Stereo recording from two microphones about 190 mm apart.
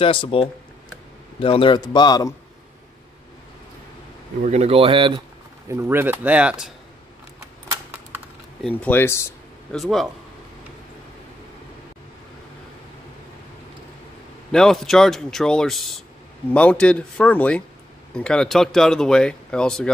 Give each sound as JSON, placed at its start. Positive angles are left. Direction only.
{"t": 0.0, "sound": "a man's voice", "side_deg": 30}
{"t": 4.4, "sound": "speech", "side_deg": -35}
{"t": 5.7, "sound": "speech", "side_deg": -15}
{"t": 8.6, "sound": "speech", "side_deg": 10}
{"t": 9.8, "sound": "speech", "side_deg": 0}
{"t": 14.5, "sound": "speech", "side_deg": 5}